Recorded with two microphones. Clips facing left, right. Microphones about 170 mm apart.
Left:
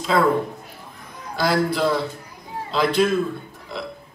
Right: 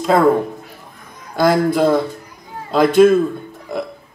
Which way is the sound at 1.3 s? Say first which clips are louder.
Right 6 dB; 50° right (ahead or behind).